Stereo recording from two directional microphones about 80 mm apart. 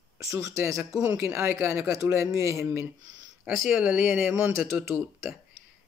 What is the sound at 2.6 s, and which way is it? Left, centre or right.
Speech, right.